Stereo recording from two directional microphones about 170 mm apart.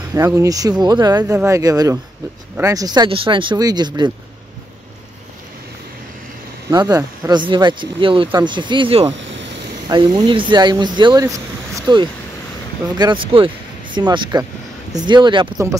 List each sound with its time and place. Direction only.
0.1 s speech: 15° right (ahead or behind)
6.7 s speech: 20° right (ahead or behind)
9.2 s vehicle: 90° right
9.8 s speech: 30° right (ahead or behind)